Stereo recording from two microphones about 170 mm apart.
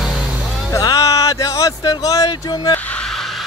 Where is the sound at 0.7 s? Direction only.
20° left (ahead or behind).